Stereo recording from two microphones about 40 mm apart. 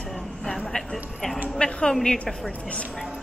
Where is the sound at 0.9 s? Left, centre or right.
Centre.